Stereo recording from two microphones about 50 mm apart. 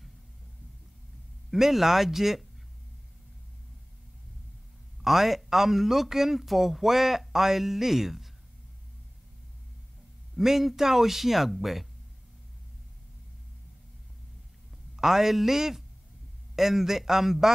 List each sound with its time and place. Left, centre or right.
1.5 s a man's voice: centre
5.0 s a man's voice: centre
10.3 s a man's voice: centre
15.0 s a man's voice: centre